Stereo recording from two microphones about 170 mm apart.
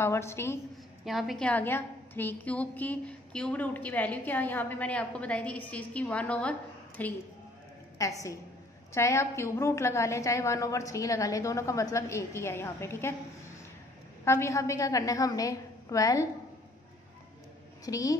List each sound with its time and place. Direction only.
0.0 s a woman's voice: 15° left (ahead or behind)
1.0 s a woman's voice: centre (ahead or behind)
14.2 s a woman's voice: 15° left (ahead or behind)
17.8 s a woman's voice: 20° left (ahead or behind)